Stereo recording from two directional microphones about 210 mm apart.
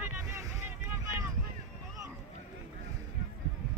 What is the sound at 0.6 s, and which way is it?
Boat, 10° right (ahead or behind).